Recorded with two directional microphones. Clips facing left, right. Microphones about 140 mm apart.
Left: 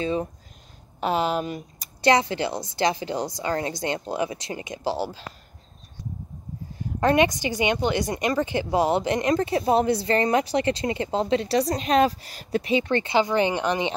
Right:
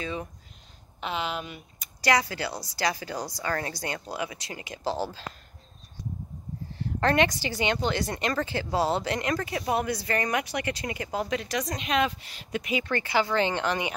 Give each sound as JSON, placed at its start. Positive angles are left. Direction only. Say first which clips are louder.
{"t": 0.0, "sound": "speech", "louder": "left 8 dB", "side_deg": 35}
{"t": 2.0, "sound": "a woman's voice", "louder": "left 5 dB", "side_deg": 25}
{"t": 6.8, "sound": "a woman's voice", "louder": "left 4 dB", "side_deg": 15}